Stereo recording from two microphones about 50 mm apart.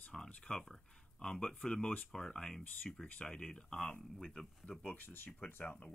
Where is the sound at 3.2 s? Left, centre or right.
Left.